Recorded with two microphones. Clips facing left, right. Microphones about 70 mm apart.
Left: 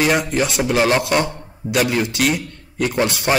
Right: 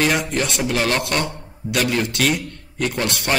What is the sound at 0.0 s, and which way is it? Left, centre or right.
A man's voice, centre.